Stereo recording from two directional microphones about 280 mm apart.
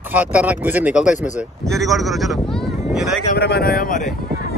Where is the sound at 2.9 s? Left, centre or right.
Centre.